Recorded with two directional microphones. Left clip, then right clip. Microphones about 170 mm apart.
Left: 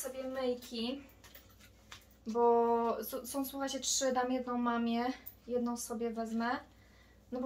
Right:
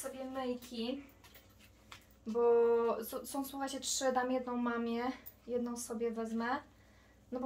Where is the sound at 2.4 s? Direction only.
40° right (ahead or behind).